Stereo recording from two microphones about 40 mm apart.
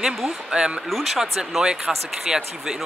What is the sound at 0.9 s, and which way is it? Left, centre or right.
Speech, centre.